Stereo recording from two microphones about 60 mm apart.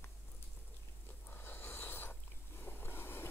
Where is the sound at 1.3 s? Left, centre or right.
Left.